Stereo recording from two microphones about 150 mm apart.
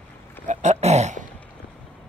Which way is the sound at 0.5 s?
50° right (ahead or behind).